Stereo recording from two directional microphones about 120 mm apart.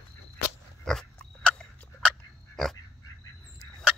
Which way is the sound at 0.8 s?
5° left (ahead or behind).